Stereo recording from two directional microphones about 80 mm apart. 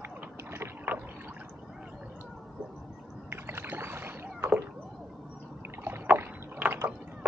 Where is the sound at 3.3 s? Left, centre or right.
Right.